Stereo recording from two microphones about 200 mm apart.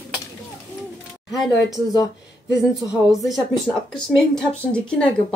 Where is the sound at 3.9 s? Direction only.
5° left (ahead or behind).